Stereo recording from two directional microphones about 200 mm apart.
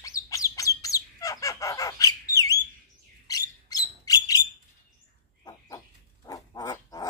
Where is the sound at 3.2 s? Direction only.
20° left (ahead or behind).